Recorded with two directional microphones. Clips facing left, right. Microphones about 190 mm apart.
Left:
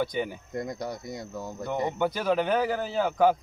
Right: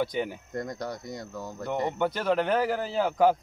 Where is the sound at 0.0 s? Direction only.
Centre (ahead or behind).